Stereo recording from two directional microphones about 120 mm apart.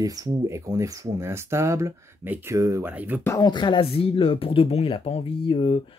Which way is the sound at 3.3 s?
35° left (ahead or behind).